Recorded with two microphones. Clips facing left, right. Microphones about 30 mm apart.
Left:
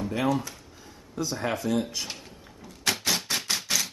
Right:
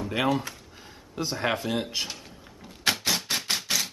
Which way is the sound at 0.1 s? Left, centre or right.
Right.